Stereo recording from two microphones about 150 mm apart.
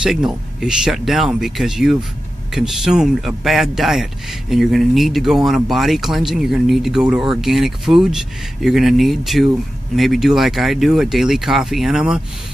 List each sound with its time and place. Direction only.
0.0 s a man's voice: 5° right (ahead or behind)